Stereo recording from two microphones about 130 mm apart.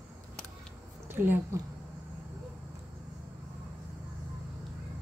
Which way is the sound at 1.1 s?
15° right (ahead or behind).